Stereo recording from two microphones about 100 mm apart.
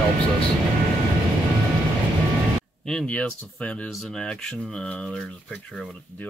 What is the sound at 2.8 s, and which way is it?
Speech, 5° left (ahead or behind).